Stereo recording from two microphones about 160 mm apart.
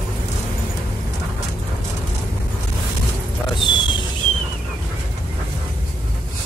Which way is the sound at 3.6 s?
30° left (ahead or behind).